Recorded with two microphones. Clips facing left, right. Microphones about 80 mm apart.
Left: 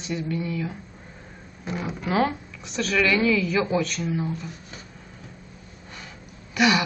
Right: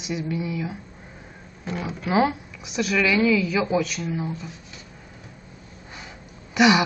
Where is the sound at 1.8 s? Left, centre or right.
Centre.